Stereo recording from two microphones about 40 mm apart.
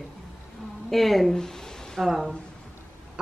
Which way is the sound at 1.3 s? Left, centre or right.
Centre.